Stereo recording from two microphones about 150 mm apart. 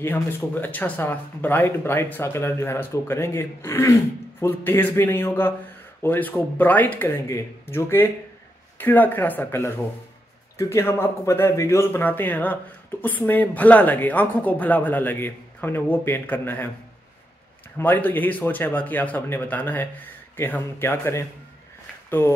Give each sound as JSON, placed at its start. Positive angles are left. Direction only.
{"t": 0.0, "sound": "speech", "side_deg": 15}
{"t": 17.7, "sound": "speech", "side_deg": 10}